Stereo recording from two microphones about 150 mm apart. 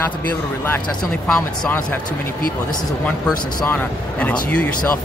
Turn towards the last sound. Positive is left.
turn(degrees=10)  # may be behind; listen again after turning